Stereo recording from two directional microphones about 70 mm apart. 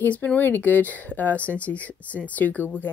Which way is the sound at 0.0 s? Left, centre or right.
Left.